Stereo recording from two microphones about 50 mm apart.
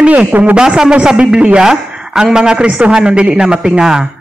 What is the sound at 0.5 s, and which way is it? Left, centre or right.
A woman's voice, centre.